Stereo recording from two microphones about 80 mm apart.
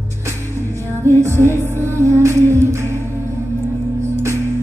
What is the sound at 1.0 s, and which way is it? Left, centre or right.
Music, right.